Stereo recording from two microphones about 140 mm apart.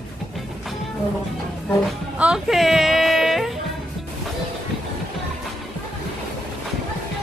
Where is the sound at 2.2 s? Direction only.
5° right (ahead or behind).